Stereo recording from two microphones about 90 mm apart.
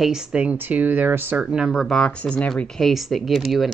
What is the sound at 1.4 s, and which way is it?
Speech, 10° right (ahead or behind).